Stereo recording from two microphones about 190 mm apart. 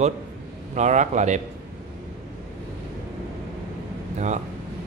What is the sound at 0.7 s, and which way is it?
Speech, 40° right (ahead or behind).